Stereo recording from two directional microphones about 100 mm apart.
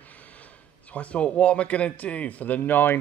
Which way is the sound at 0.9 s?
15° left (ahead or behind).